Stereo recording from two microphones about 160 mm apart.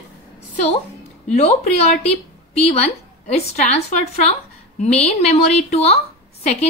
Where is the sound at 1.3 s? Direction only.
45° left (ahead or behind).